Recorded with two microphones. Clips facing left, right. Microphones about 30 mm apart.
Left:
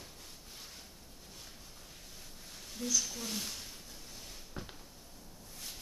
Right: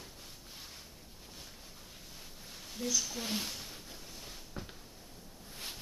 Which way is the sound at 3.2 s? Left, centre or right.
Right.